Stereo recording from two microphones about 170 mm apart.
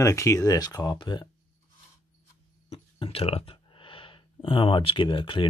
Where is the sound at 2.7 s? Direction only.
35° left (ahead or behind).